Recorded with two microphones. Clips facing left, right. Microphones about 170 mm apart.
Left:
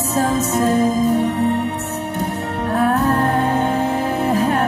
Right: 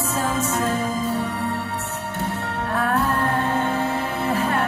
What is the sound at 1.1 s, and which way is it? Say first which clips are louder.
Music: left 8 dB; 20° left (ahead or behind).